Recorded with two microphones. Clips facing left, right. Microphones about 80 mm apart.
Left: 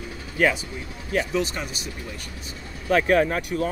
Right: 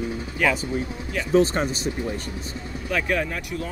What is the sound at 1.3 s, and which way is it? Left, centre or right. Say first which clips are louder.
Speech: right 7 dB; right.